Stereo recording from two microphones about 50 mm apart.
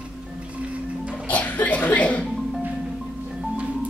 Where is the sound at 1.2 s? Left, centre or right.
Left.